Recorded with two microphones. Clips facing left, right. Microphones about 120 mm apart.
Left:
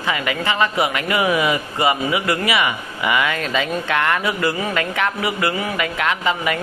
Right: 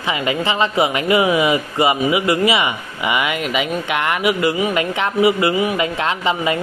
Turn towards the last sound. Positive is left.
turn(degrees=-20)  # may be behind; listen again after turning